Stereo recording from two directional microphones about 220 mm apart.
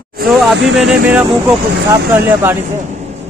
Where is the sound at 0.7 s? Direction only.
5° right (ahead or behind).